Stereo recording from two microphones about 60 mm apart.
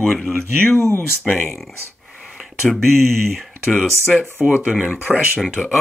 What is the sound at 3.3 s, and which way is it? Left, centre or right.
Speech, centre.